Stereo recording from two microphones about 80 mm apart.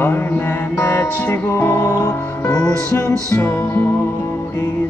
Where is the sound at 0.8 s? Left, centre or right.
Left.